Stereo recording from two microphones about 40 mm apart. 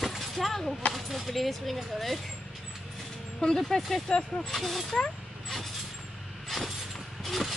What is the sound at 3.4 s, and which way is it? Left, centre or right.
Speech, centre.